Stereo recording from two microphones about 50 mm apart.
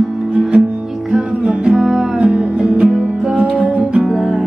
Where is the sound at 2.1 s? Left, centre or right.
Right.